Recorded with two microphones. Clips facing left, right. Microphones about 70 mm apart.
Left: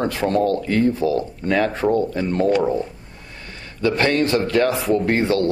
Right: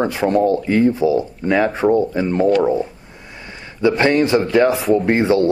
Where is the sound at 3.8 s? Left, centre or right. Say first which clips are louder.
Right 4 dB; centre.